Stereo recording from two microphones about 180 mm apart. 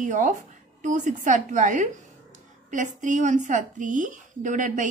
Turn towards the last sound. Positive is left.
turn(degrees=-45)  # may be behind; listen again after turning